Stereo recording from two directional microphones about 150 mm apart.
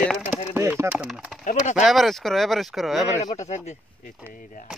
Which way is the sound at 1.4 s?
50° left (ahead or behind).